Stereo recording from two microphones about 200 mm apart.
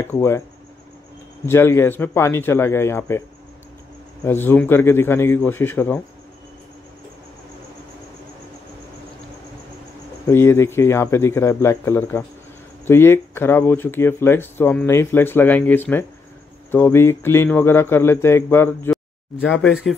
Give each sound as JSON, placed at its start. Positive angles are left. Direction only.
{"t": 0.0, "sound": "speech", "side_deg": 10}
{"t": 1.4, "sound": "speech", "side_deg": 10}
{"t": 10.2, "sound": "speech", "side_deg": 10}